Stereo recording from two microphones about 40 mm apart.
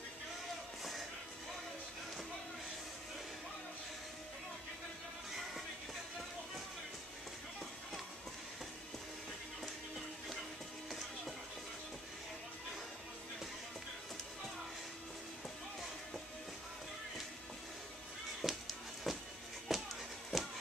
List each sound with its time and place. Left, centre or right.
10.9 s music: centre
18.4 s music: centre